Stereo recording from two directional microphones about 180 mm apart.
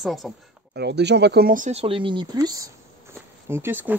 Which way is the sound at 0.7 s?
70° right (ahead or behind).